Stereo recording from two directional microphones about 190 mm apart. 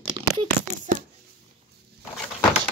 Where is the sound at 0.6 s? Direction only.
5° right (ahead or behind).